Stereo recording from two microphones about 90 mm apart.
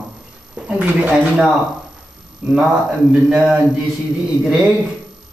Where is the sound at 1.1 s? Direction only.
5° right (ahead or behind).